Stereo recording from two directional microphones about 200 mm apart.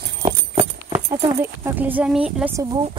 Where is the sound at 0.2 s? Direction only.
30° right (ahead or behind).